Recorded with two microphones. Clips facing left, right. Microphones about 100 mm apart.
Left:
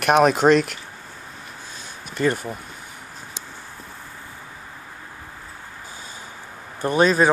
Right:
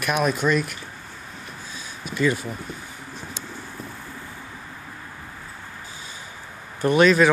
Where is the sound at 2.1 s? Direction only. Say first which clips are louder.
Left 1 dB; 50° left (ahead or behind).